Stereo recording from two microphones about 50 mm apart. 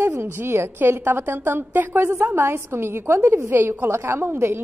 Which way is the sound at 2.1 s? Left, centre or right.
Right.